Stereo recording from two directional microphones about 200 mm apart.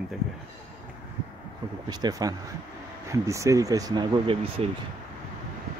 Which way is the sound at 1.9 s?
20° right (ahead or behind).